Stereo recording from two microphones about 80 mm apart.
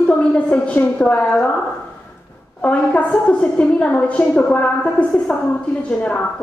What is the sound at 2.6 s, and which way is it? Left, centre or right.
Speech, centre.